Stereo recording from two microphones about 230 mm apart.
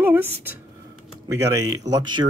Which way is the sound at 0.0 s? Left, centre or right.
Centre.